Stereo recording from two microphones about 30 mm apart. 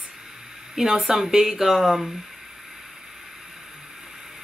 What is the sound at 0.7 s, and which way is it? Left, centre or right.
Speech, centre.